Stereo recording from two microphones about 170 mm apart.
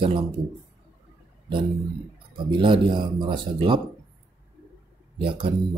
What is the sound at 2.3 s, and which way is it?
Speech, 30° right (ahead or behind).